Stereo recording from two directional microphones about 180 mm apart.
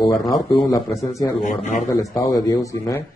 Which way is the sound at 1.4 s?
40° left (ahead or behind).